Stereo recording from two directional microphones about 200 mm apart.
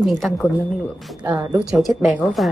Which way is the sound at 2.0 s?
Centre (ahead or behind).